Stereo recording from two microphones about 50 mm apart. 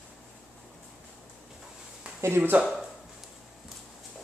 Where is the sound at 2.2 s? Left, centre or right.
Right.